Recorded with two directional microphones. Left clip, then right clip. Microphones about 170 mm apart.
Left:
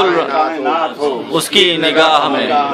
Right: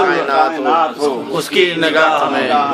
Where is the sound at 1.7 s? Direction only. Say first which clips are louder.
Left 2 dB; 55° right (ahead or behind).